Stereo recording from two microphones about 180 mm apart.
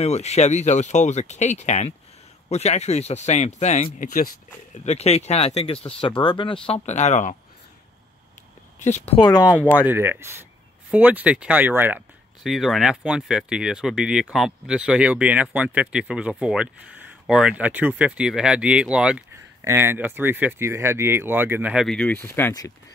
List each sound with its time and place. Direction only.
0.0 s speech: 35° left (ahead or behind)
4.8 s speech: 35° left (ahead or behind)
6.7 s speech: 40° left (ahead or behind)
8.7 s speech: 40° left (ahead or behind)
9.2 s speech: 20° left (ahead or behind)
9.8 s speech: 10° right (ahead or behind)
12.4 s speech: centre (ahead or behind)
21.8 s speech: 5° left (ahead or behind)